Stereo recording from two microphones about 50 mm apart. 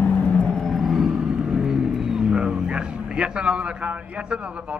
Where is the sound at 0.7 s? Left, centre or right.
Centre.